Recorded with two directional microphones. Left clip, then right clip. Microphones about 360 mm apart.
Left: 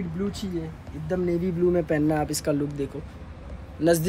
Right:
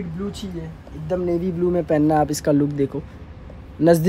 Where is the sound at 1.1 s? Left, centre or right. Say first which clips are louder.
Right 4 dB; centre.